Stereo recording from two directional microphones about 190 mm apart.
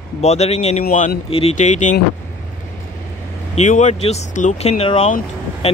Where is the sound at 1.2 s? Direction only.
30° left (ahead or behind).